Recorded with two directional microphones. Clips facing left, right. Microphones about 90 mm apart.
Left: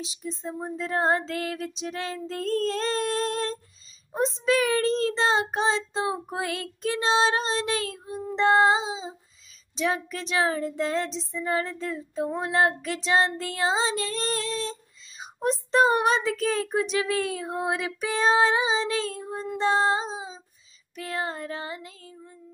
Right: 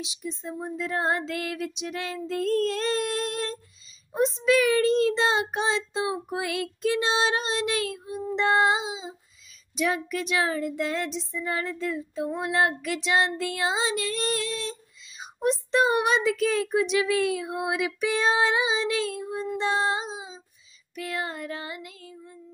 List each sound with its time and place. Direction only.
0.0 s child singing: 40° left (ahead or behind)